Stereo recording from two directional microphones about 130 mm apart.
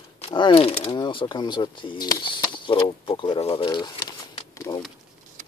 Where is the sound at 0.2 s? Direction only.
40° left (ahead or behind).